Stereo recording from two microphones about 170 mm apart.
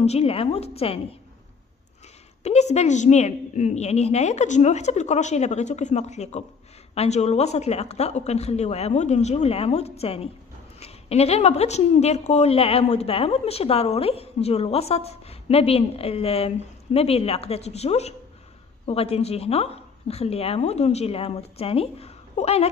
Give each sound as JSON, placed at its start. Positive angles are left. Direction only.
{"t": 0.0, "sound": "a woman's voice", "side_deg": 35}
{"t": 2.4, "sound": "a woman's voice", "side_deg": 40}